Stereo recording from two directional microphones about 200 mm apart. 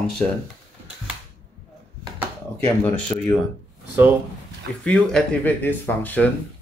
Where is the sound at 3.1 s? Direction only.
15° left (ahead or behind).